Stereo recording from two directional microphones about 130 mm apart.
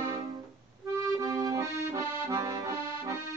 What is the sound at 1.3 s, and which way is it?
Accordion, 25° right (ahead or behind).